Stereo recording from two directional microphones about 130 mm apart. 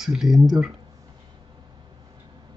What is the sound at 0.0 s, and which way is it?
Speech, 5° right (ahead or behind).